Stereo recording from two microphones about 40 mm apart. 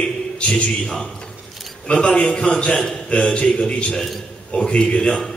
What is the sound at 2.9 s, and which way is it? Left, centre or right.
A man's voice, left.